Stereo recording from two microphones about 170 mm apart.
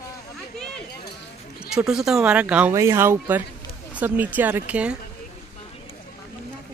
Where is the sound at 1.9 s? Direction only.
5° right (ahead or behind).